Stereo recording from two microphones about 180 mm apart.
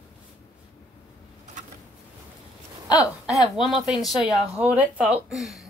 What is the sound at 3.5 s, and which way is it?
Speech, centre (ahead or behind).